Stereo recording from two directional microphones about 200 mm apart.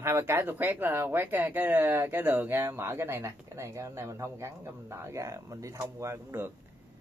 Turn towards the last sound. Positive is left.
turn(degrees=-10)  # may be behind; listen again after turning